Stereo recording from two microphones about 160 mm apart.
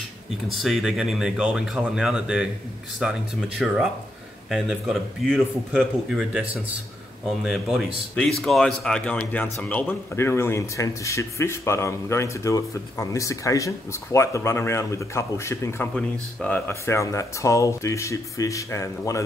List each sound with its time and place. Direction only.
0.5 s speech: centre (ahead or behind); by 15.9 s 15° left (ahead or behind)
15.9 s speech: 5° left (ahead or behind)